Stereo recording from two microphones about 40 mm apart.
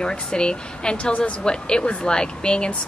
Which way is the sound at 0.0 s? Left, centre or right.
Left.